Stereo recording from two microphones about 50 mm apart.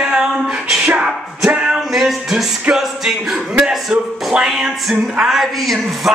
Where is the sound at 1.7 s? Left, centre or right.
Centre.